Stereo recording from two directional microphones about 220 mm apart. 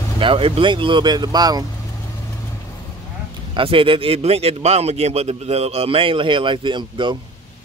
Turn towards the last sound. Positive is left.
turn(degrees=-20)  # may be behind; listen again after turning